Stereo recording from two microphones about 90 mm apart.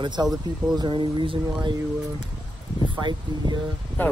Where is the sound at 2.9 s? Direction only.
55° right (ahead or behind).